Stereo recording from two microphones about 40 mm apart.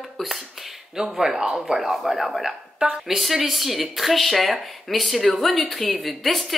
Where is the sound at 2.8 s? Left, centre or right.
Centre.